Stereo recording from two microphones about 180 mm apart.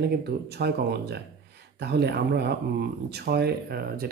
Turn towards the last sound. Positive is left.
turn(degrees=-55)  # may be behind; listen again after turning